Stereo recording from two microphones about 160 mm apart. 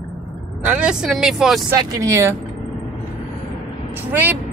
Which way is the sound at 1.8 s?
20° right (ahead or behind).